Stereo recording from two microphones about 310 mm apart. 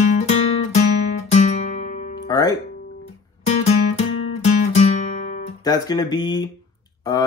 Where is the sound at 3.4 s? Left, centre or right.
Left.